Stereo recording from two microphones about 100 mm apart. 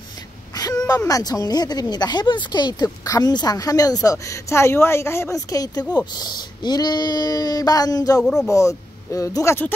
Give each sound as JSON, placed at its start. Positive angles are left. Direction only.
{"t": 0.6, "sound": "a woman's voice", "side_deg": 35}
{"t": 8.2, "sound": "speech", "side_deg": 5}
{"t": 8.5, "sound": "a woman's voice", "side_deg": 30}